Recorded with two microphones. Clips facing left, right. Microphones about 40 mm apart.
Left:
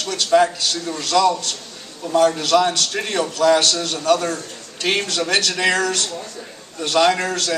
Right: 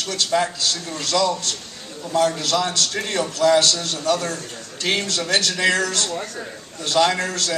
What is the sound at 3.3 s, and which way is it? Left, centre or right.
A man's voice, left.